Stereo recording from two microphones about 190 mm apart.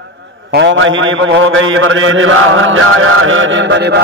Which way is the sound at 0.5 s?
75° right (ahead or behind).